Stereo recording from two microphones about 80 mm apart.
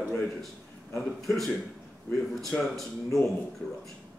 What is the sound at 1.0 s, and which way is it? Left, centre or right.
Speech, centre.